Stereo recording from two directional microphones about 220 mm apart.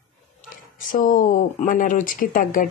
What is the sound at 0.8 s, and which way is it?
A woman's voice, 40° left (ahead or behind).